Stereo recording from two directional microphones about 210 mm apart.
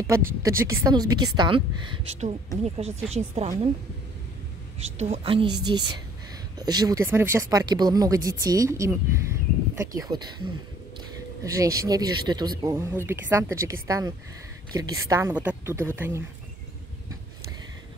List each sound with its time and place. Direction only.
0.0 s a woman's voice: 15° right (ahead or behind)
2.6 s a woman's voice: 30° right (ahead or behind)
4.7 s a woman's voice: 30° right (ahead or behind)
11.5 s speech: 15° right (ahead or behind)